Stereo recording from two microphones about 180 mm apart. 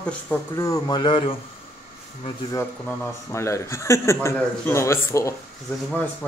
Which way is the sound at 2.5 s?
15° left (ahead or behind).